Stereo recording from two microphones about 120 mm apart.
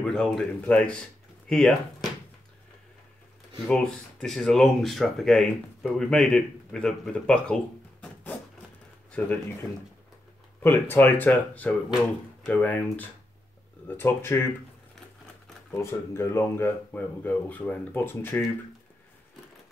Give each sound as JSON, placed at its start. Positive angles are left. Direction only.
{"t": 0.0, "sound": "speech", "side_deg": 5}
{"t": 3.6, "sound": "speech", "side_deg": 5}
{"t": 8.0, "sound": "a sound", "side_deg": 15}
{"t": 9.2, "sound": "speech", "side_deg": 10}
{"t": 10.6, "sound": "speech", "side_deg": 20}
{"t": 15.7, "sound": "speech", "side_deg": 25}